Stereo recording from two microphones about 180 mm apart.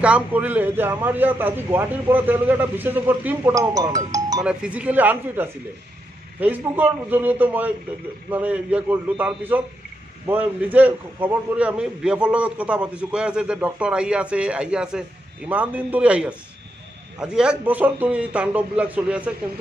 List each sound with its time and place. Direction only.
0.0 s a man's voice: 10° right (ahead or behind)
4.5 s a man's voice: 5° right (ahead or behind)